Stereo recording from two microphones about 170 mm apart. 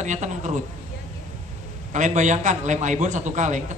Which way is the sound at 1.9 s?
45° right (ahead or behind).